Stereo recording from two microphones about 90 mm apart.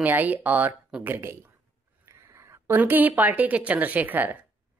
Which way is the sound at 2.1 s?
35° right (ahead or behind).